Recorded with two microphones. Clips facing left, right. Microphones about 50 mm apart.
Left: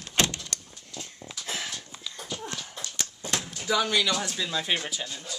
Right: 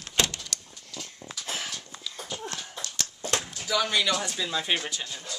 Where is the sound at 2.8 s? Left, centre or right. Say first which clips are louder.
Right 1 dB; centre.